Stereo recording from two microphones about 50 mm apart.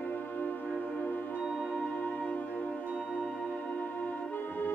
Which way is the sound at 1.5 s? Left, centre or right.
Left.